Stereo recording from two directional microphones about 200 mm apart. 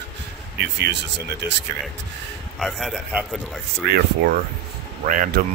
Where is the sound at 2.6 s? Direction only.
Centre (ahead or behind).